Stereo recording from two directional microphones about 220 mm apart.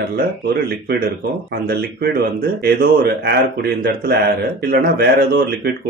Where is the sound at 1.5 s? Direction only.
45° right (ahead or behind).